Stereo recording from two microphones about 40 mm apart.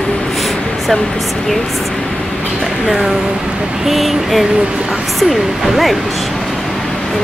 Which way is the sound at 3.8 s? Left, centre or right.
Centre.